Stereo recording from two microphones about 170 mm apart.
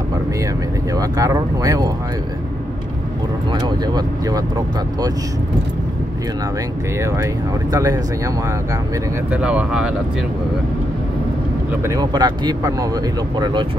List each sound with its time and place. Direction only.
0.9 s speech: 20° right (ahead or behind)
3.5 s speech: 25° right (ahead or behind)
7.0 s speech: 15° right (ahead or behind)
9.3 s speech: 5° right (ahead or behind)
11.8 s speech: 20° right (ahead or behind)